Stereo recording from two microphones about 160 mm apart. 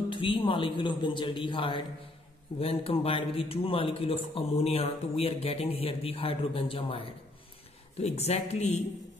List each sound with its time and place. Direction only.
0.1 s a man's voice: 35° left (ahead or behind)
8.0 s speech: 40° left (ahead or behind)